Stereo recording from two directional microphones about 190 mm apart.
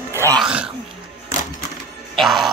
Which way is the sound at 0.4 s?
5° right (ahead or behind).